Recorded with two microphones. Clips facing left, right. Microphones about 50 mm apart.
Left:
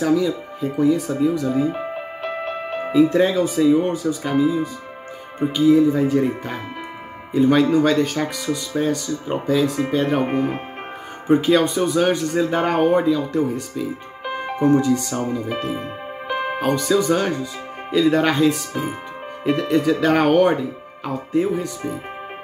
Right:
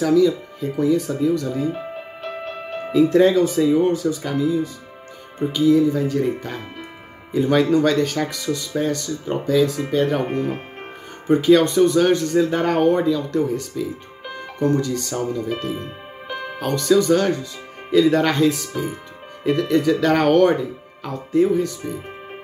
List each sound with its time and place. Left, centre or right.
0.0 s speech: centre
5.4 s speech: centre
5.7 s speech: centre
11.2 s speech: centre
14.2 s music: left
14.6 s speech: centre
18.7 s speech: centre